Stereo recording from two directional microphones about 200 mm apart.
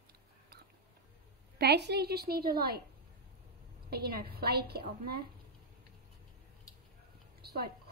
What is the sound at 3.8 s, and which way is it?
A woman's voice, 50° right (ahead or behind).